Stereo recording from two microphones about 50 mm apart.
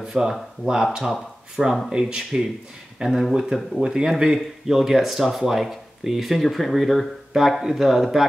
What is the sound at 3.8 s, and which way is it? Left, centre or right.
Speech, centre.